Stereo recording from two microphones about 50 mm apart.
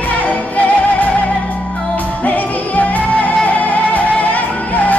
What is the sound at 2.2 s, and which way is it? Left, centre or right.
Music, left.